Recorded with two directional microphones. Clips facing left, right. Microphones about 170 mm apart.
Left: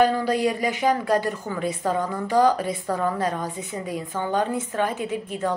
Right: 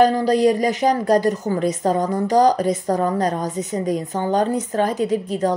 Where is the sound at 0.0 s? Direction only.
40° right (ahead or behind).